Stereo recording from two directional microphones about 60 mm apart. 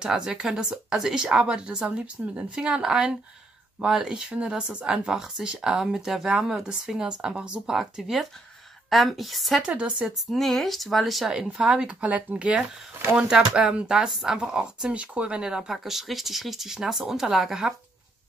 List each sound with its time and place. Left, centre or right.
0.0 s speech: centre
7.7 s speech: centre
9.6 s speech: centre
10.3 s speech: centre
11.3 s speech: centre